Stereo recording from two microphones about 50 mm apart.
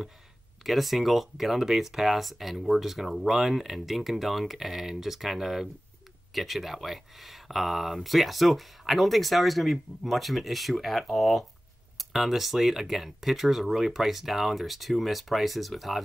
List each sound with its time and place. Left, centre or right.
0.7 s speech: centre